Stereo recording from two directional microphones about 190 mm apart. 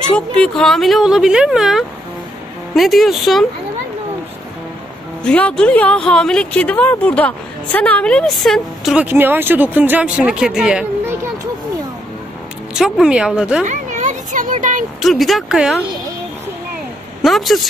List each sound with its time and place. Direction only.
0.1 s speech: 5° left (ahead or behind)
5.2 s speech: 5° left (ahead or behind)
12.7 s speech: 5° right (ahead or behind)
13.7 s a sound: 40° right (ahead or behind)
15.0 s speech: centre (ahead or behind)
17.2 s speech: centre (ahead or behind)